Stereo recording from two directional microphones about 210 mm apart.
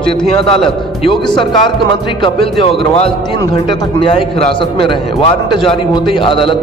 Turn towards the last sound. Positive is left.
turn(degrees=25)  # may be behind; listen again after turning